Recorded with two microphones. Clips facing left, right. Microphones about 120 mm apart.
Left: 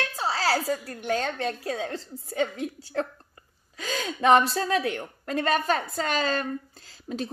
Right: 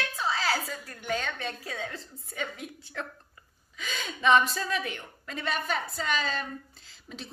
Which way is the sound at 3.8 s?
40° left (ahead or behind).